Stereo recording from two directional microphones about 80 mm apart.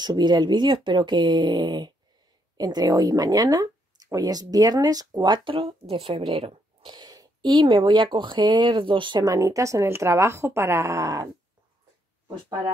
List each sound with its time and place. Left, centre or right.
0.0 s speech: right
6.8 s a sound: right
7.5 s speech: right
9.2 s a woman's voice: right